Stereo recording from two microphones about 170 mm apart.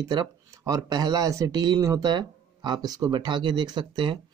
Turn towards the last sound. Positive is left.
turn(degrees=-25)  # may be behind; listen again after turning